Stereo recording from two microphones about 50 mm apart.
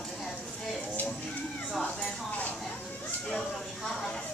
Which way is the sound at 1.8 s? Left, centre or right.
Centre.